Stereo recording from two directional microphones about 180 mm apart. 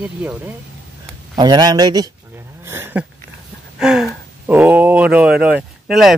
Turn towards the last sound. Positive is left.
turn(degrees=0)  # may be behind; listen again after turning